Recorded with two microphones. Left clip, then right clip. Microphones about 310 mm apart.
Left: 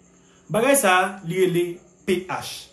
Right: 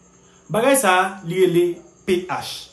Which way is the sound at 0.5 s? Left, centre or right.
Centre.